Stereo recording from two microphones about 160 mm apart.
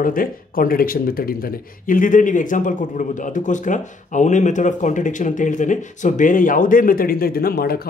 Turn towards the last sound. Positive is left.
turn(degrees=70)  # may be behind; listen again after turning